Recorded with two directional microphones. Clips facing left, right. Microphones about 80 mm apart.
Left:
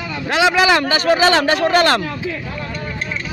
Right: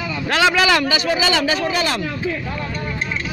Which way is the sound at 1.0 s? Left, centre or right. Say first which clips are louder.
Left 5 dB; left.